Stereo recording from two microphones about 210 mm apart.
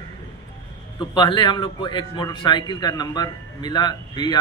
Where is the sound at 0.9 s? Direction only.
20° left (ahead or behind).